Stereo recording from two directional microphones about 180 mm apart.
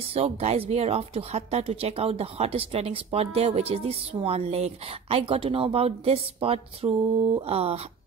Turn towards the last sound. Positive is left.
turn(degrees=-35)  # may be behind; listen again after turning